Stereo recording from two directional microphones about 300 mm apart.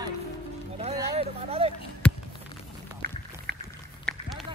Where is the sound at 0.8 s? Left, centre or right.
Right.